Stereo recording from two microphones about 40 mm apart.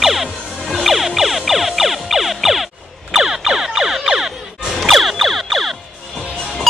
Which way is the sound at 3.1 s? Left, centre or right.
Centre.